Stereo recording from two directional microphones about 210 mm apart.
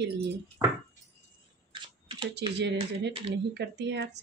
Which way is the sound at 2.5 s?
55° right (ahead or behind).